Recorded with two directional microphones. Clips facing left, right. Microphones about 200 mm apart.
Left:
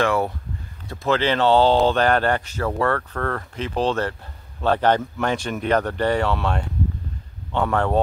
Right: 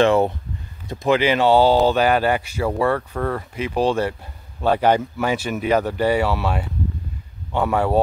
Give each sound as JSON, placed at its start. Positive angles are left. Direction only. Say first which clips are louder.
{"t": 0.0, "sound": "speech", "louder": "right 5 dB", "side_deg": -25}